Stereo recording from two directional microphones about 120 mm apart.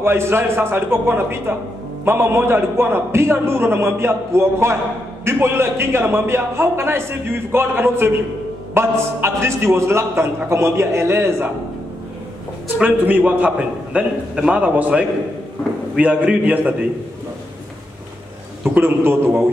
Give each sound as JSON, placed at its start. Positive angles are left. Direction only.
{"t": 0.0, "sound": "a man's voice", "side_deg": -20}
{"t": 12.7, "sound": "a man's voice", "side_deg": -15}
{"t": 18.8, "sound": "a man's voice", "side_deg": -20}